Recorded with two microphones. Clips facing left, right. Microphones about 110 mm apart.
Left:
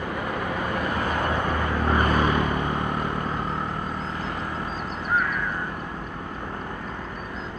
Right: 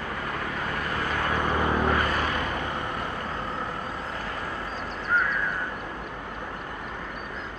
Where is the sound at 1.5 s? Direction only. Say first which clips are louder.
Right 1 dB; 15° right (ahead or behind).